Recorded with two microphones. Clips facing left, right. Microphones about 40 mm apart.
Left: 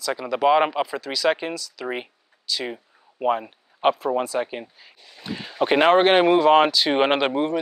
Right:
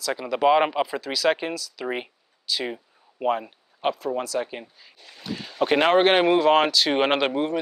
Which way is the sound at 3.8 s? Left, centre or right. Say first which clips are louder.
Left 5 dB; left.